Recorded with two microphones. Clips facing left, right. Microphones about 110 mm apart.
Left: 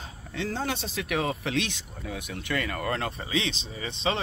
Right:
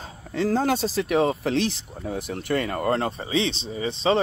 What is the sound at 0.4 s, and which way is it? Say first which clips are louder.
Speech: right 9 dB; 40° right (ahead or behind).